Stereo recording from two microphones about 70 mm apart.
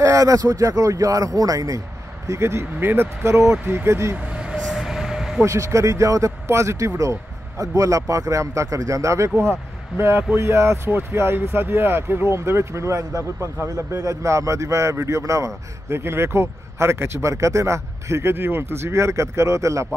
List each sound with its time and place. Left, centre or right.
0.0 s speech: right
2.2 s speech: right
4.6 s train: centre
5.4 s speech: right